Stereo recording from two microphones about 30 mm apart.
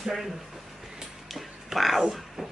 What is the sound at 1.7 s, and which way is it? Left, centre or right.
Speech, centre.